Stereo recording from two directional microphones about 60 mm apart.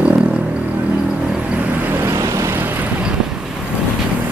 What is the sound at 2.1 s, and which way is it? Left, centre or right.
Vehicle, right.